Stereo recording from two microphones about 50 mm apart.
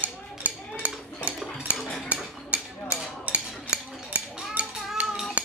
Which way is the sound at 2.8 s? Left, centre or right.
Right.